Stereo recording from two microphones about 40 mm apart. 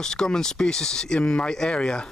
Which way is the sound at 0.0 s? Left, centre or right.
Centre.